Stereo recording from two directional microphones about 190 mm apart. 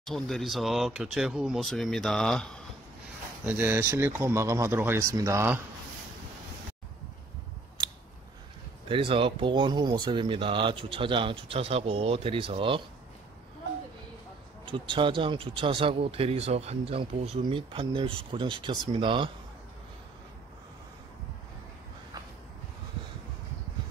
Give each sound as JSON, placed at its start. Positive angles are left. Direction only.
{"t": 0.0, "sound": "speech", "side_deg": 0}
{"t": 3.4, "sound": "speech", "side_deg": -10}
{"t": 8.8, "sound": "speech", "side_deg": -30}
{"t": 14.6, "sound": "speech", "side_deg": -25}